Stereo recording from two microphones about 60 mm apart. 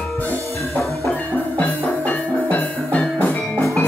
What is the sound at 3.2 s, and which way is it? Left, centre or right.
Music, left.